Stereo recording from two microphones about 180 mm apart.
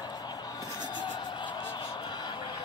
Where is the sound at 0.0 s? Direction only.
25° left (ahead or behind).